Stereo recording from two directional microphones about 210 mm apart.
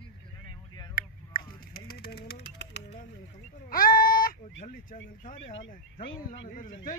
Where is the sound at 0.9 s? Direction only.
45° left (ahead or behind).